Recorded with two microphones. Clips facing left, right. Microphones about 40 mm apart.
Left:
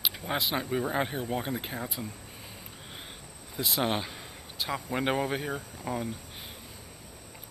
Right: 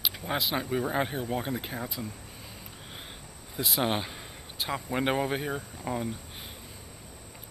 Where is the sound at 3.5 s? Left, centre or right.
Centre.